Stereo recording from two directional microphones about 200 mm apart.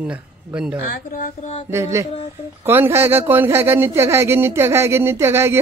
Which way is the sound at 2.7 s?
10° right (ahead or behind).